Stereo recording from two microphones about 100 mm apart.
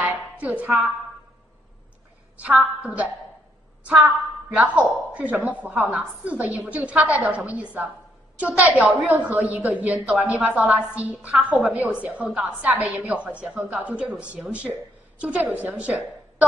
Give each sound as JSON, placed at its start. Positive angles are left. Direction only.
{"t": 0.0, "sound": "music", "side_deg": -15}
{"t": 2.4, "sound": "a woman's voice", "side_deg": -15}